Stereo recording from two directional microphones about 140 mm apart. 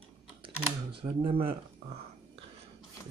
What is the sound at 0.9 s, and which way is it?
Speech, 40° right (ahead or behind).